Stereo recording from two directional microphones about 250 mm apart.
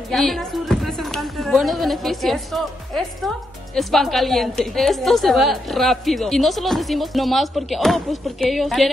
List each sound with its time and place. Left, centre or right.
0.1 s speech: centre